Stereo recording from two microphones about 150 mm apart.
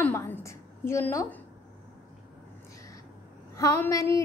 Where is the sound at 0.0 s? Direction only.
15° left (ahead or behind).